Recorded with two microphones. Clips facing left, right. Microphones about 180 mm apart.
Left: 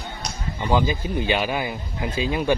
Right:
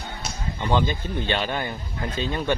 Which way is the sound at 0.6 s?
5° left (ahead or behind).